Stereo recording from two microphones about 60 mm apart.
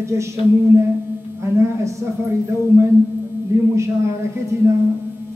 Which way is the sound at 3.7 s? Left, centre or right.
Right.